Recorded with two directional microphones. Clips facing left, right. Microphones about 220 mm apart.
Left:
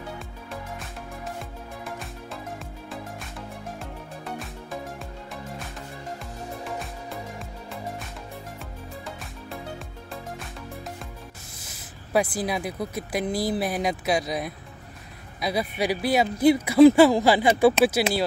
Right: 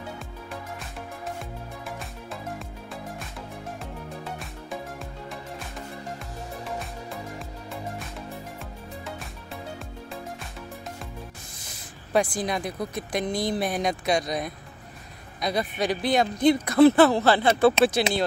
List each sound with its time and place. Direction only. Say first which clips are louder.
6.8 s music: even; centre (ahead or behind)
9.0 s music: even; centre (ahead or behind)
11.7 s speech: even; 5° left (ahead or behind)